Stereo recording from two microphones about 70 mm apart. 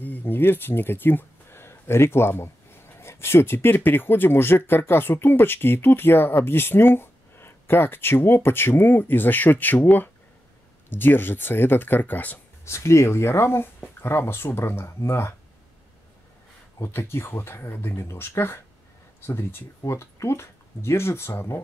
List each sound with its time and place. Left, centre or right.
0.0 s speech: left
12.6 s speech: left
16.8 s speech: left